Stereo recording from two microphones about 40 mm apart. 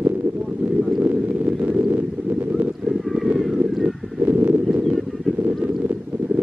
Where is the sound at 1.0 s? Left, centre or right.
Right.